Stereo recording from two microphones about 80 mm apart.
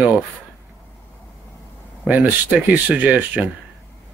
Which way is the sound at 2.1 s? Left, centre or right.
Right.